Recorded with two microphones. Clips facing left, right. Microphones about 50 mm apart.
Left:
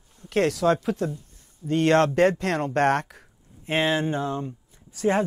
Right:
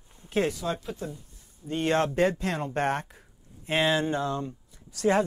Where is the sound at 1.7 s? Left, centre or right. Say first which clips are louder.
Left 6 dB; left.